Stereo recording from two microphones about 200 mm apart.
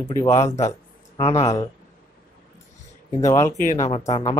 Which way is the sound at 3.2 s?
15° left (ahead or behind).